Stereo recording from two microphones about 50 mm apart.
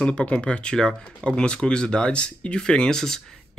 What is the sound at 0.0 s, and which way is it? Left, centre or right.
Speech, left.